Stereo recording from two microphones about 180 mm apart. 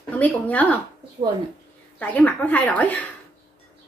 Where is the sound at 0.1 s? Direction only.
10° left (ahead or behind).